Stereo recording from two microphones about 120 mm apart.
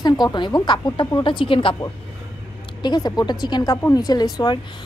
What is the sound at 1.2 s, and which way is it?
Speech, 45° left (ahead or behind).